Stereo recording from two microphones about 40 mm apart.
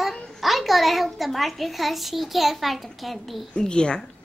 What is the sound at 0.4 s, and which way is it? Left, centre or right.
A child's voice, centre.